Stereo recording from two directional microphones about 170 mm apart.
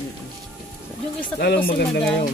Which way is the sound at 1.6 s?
70° left (ahead or behind).